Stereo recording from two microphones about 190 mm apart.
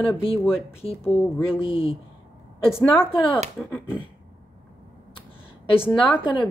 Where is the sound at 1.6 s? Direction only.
30° left (ahead or behind).